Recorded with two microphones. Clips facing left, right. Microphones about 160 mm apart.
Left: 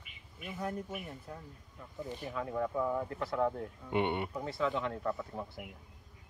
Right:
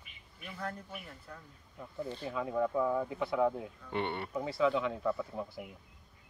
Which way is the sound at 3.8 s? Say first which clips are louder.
Left 4 dB; 15° left (ahead or behind).